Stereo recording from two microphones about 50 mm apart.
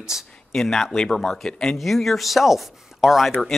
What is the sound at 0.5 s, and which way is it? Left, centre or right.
Speech, centre.